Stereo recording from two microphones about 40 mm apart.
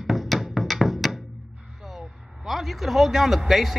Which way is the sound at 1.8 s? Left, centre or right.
Centre.